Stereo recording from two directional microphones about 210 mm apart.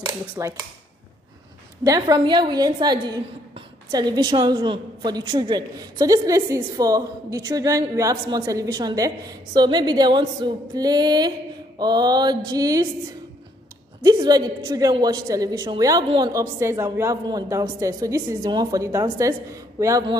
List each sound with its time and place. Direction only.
0.0 s speech: 15° right (ahead or behind)
1.9 s a woman's voice: 20° right (ahead or behind)
14.0 s a man's voice: 20° right (ahead or behind)